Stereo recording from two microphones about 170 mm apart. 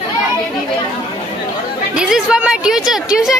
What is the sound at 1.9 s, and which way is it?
A woman's voice, 5° right (ahead or behind).